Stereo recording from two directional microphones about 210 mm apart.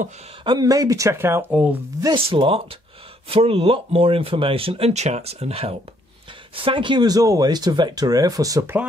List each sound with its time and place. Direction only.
0.4 s speech: 20° right (ahead or behind)
2.0 s speech: 25° right (ahead or behind)